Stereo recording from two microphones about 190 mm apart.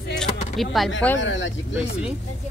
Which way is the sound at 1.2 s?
75° left (ahead or behind).